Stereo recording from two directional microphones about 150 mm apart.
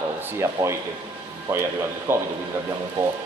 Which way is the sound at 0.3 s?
20° right (ahead or behind).